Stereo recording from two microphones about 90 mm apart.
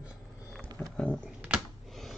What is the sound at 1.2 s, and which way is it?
Dog, 15° right (ahead or behind).